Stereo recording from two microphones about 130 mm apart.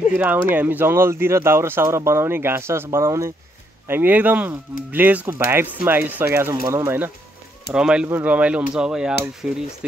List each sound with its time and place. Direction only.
0.1 s speech: 15° right (ahead or behind)
7.7 s speech: 5° right (ahead or behind)